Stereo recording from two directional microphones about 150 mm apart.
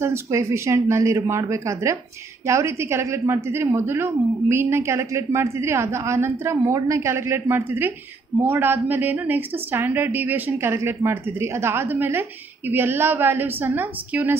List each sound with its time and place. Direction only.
0.0 s a woman's voice: 20° right (ahead or behind)